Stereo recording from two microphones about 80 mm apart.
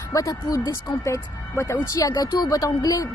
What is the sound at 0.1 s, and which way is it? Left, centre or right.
Speech, left.